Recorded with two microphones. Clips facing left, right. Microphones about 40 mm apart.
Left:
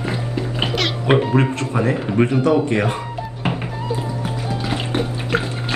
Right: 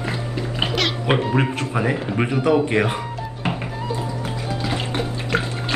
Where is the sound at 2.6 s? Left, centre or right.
Centre.